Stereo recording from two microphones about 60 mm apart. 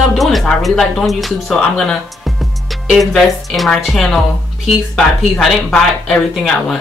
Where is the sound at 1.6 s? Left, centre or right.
Centre.